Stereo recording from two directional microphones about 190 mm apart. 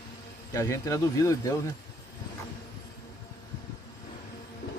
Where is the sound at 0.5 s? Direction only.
15° left (ahead or behind).